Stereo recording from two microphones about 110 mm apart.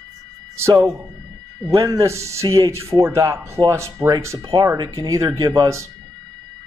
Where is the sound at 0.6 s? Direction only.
25° right (ahead or behind).